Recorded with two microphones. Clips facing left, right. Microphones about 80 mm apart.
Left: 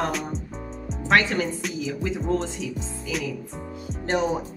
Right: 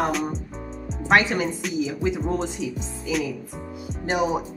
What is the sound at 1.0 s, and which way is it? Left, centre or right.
Speech, centre.